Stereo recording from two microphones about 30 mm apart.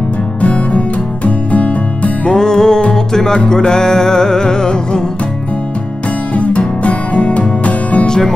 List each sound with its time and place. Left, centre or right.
0.4 s music: left
2.2 s music: left
6.3 s music: left